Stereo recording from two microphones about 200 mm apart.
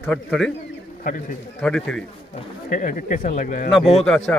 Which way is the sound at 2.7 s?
40° left (ahead or behind).